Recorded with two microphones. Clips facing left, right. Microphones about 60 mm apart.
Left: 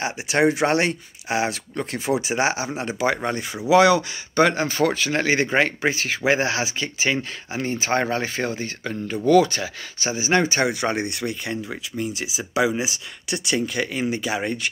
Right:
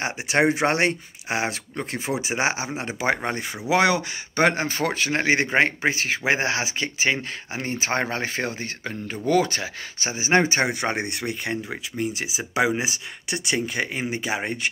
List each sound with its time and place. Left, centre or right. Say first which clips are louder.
0.0 s speech: left 1 dB; right